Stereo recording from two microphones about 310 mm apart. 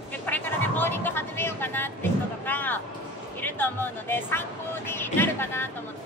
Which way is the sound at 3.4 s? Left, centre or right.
Centre.